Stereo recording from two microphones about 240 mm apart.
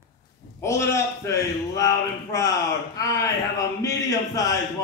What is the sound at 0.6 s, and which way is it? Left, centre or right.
A man's voice, centre.